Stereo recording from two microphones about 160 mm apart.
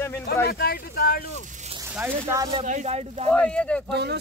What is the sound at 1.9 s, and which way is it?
Speech, 10° right (ahead or behind).